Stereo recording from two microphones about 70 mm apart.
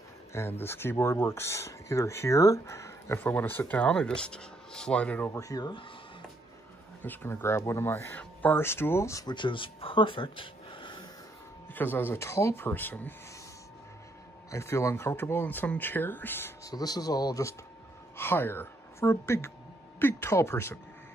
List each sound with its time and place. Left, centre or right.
0.3 s speech: left
3.3 s speech: left
5.4 s speech: left
7.0 s speech: left
8.1 s speech: left
9.1 s speech: left
11.7 s speech: left
12.6 s speech: left
14.5 s speech: left
16.6 s speech: left
18.1 s speech: left